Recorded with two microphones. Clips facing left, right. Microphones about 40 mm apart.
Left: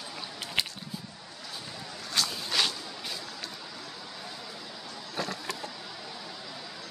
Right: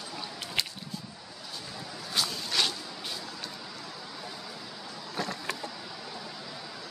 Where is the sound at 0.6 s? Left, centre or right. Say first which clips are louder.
Left 1 dB; centre.